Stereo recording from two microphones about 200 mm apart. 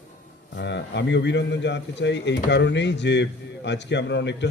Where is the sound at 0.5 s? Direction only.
60° left (ahead or behind).